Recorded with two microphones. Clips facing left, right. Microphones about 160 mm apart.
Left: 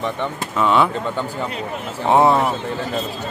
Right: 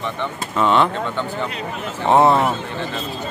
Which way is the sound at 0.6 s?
5° left (ahead or behind).